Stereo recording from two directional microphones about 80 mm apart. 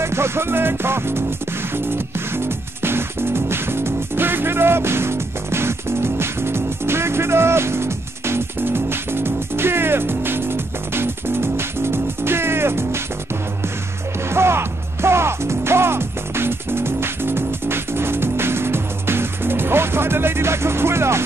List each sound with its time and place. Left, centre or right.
0.0 s music: right
2.3 s music: right
14.3 s music: right